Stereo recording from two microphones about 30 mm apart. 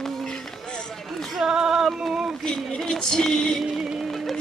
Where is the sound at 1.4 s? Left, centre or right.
Right.